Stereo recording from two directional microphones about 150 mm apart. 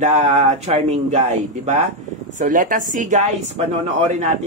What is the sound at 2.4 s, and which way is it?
Speech, 65° right (ahead or behind).